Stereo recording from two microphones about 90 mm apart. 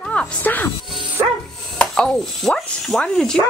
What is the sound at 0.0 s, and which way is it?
Speech, 10° left (ahead or behind).